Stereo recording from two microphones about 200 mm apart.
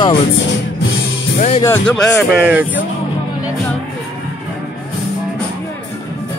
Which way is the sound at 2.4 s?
10° right (ahead or behind).